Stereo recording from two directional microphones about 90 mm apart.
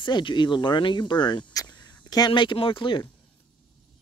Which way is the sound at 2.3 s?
80° left.